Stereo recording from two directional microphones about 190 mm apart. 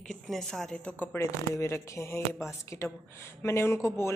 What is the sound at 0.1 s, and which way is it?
Speech, 5° left (ahead or behind).